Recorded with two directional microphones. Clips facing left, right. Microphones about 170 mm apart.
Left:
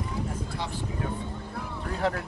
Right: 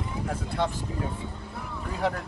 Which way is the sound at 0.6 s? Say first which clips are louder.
Right 11 dB; 55° right (ahead or behind).